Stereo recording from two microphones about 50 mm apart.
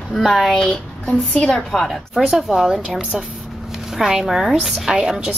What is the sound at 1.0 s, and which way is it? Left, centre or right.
Speech, left.